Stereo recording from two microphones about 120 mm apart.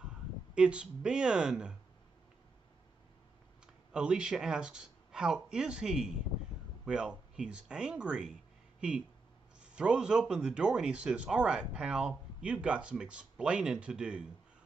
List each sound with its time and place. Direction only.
0.6 s speech: 10° right (ahead or behind)
3.6 s speech: 5° right (ahead or behind)
9.6 s speech: 5° right (ahead or behind)